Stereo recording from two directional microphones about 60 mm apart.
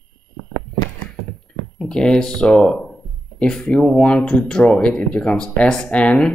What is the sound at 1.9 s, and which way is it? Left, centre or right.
Speech, centre.